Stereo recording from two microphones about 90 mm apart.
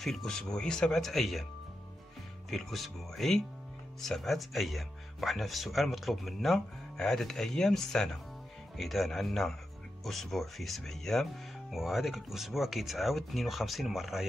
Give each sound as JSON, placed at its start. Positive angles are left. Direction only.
{"t": 0.0, "sound": "speech", "side_deg": 5}
{"t": 2.5, "sound": "speech", "side_deg": 0}